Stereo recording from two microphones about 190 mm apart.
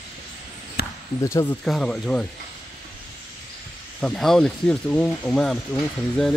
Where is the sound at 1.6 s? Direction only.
5° left (ahead or behind).